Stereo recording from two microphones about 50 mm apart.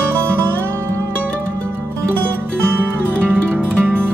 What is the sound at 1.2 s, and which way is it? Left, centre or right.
Music, left.